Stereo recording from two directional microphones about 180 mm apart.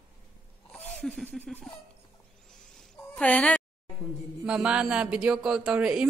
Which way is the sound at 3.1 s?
10° left (ahead or behind).